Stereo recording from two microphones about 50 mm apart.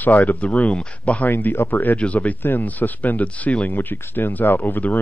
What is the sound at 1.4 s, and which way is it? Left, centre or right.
Speech, left.